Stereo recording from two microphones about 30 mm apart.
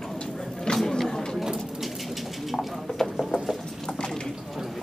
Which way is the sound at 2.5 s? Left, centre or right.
Centre.